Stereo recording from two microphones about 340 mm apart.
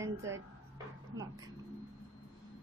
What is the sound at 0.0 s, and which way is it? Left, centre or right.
A woman's voice, centre.